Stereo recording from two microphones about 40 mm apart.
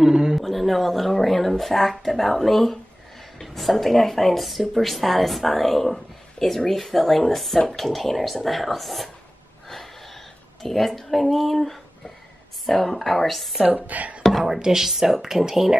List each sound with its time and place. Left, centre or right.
0.0 s a sound: centre
0.4 s speech: centre
10.6 s speech: centre
13.6 s a woman's voice: right
14.4 s speech: centre